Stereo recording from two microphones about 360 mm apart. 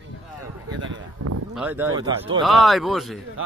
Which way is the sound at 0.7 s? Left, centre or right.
Right.